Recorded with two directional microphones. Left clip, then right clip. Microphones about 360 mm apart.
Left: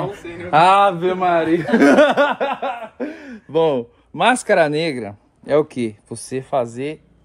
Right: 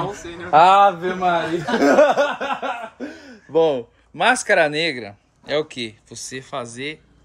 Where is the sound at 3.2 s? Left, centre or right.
Left.